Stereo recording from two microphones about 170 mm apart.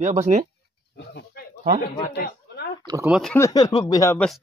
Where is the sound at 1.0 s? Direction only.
80° left.